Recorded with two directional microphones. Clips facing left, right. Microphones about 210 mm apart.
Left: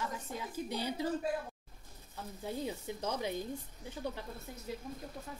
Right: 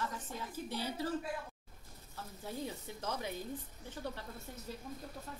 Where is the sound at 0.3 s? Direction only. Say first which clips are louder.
Left 3 dB; 15° left (ahead or behind).